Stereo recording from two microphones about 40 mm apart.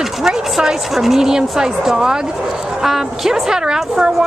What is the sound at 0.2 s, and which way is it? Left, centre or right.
Speech, centre.